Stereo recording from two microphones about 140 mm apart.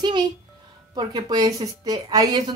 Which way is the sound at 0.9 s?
30° right (ahead or behind).